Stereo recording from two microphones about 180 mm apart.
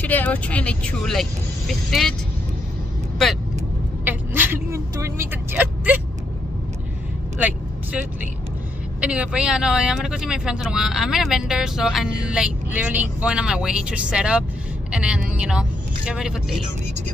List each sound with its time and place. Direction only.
0.0 s speech: 10° left (ahead or behind)
4.0 s vehicle: 10° right (ahead or behind)
7.3 s vehicle: 10° right (ahead or behind)
9.0 s speech: 5° right (ahead or behind)